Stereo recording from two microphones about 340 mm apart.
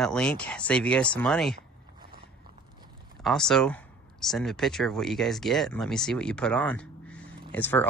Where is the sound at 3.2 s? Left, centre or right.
Centre.